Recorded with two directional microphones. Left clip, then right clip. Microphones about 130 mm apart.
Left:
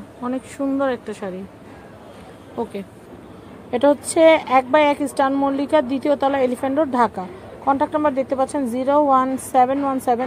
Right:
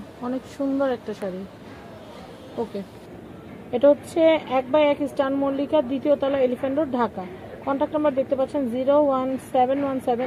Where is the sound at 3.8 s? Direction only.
70° left (ahead or behind).